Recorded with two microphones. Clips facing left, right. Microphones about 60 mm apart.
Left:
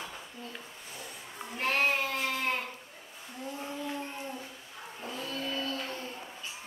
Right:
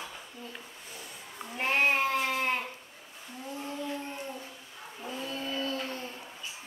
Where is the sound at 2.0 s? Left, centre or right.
Right.